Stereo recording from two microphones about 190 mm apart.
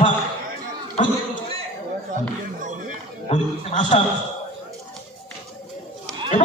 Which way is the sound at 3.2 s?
35° left (ahead or behind).